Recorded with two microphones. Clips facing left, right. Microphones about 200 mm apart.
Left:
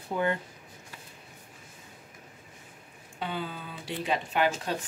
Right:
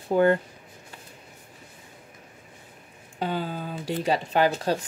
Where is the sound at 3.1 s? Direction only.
40° right (ahead or behind).